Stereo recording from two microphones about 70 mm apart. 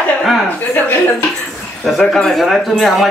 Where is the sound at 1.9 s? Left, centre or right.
Centre.